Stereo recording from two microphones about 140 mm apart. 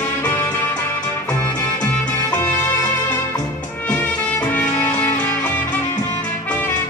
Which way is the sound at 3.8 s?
10° left (ahead or behind).